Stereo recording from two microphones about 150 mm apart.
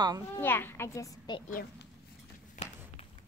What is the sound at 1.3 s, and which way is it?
Speech, 30° left (ahead or behind).